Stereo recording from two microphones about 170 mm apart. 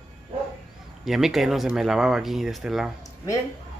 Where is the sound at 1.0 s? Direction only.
Centre (ahead or behind).